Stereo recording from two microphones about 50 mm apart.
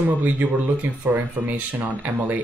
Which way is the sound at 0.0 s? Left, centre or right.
Right.